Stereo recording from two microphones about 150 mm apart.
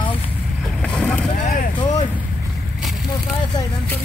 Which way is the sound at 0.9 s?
5° left (ahead or behind).